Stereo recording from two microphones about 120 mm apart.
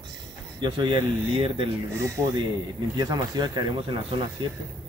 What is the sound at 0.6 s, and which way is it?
Speech, 40° right (ahead or behind).